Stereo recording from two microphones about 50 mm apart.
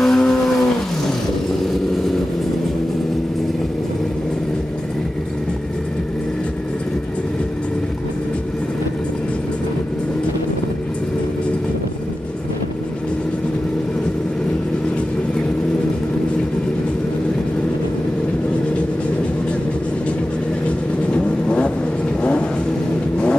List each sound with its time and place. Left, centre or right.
0.0 s vehicle: centre
21.1 s vehicle: centre